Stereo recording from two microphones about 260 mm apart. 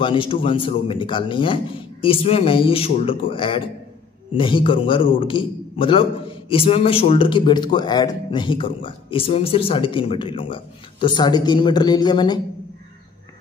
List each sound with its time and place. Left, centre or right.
0.0 s a man's voice: centre